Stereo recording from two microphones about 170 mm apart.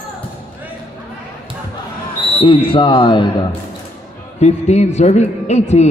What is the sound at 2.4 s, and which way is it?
Speech, 30° left (ahead or behind).